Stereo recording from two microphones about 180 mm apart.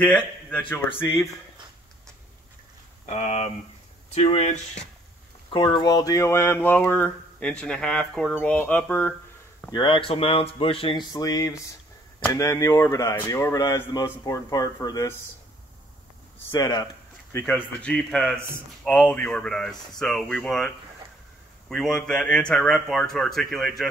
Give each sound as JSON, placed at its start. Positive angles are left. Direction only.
{"t": 0.0, "sound": "speech", "side_deg": 10}
{"t": 3.1, "sound": "speech", "side_deg": 40}
{"t": 9.7, "sound": "speech", "side_deg": 25}
{"t": 11.1, "sound": "speech", "side_deg": 20}
{"t": 16.4, "sound": "speech", "side_deg": 20}
{"t": 17.5, "sound": "a man's voice", "side_deg": 5}